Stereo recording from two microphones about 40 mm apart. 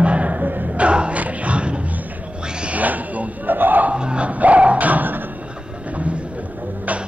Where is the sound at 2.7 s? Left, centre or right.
Right.